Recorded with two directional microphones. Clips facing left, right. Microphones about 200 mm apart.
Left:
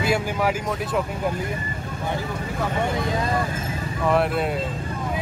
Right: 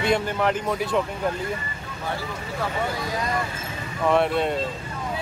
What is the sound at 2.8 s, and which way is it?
Speech, 25° left (ahead or behind).